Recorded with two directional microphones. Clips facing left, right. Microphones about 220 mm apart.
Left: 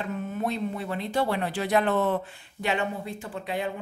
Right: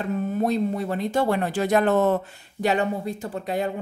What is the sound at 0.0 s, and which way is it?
Speech, 40° right (ahead or behind).